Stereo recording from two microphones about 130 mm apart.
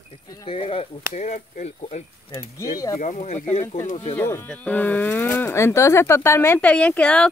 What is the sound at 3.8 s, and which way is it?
Speech, 55° left (ahead or behind).